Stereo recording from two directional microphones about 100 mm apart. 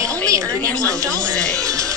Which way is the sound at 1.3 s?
10° left (ahead or behind).